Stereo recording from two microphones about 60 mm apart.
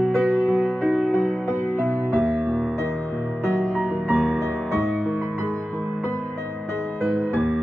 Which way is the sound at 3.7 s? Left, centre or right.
Centre.